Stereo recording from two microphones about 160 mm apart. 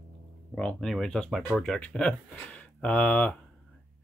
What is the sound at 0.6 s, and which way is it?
Speech, 5° left (ahead or behind).